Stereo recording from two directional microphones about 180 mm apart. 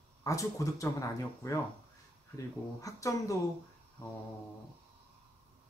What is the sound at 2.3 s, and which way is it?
Speech, 20° left (ahead or behind).